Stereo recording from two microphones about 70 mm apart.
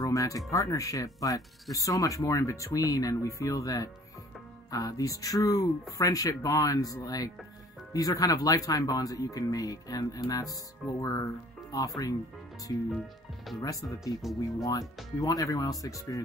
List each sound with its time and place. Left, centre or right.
0.0 s music: left
0.5 s speech: left
12.7 s speech: left